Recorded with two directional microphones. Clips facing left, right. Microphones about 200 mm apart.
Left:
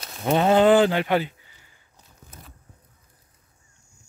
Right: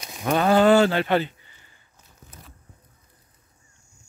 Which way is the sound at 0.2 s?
20° left (ahead or behind).